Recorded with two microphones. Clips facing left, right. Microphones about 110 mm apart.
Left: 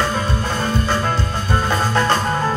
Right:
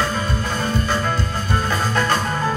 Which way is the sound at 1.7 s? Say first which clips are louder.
Left 3 dB; 30° left (ahead or behind).